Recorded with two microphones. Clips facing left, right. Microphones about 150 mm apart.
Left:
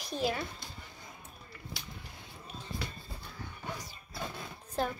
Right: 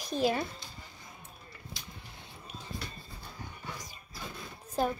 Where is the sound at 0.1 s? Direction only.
20° right (ahead or behind).